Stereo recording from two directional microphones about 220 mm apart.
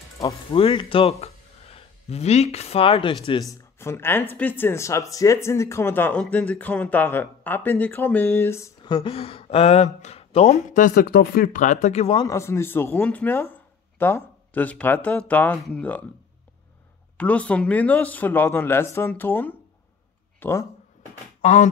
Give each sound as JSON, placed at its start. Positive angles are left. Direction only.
{"t": 0.5, "sound": "speech", "side_deg": 25}
{"t": 3.8, "sound": "speech", "side_deg": 10}
{"t": 17.2, "sound": "speech", "side_deg": 5}
{"t": 21.4, "sound": "speech", "side_deg": 35}